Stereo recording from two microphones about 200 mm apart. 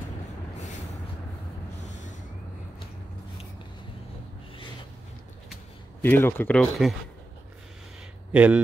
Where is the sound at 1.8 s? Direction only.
35° left (ahead or behind).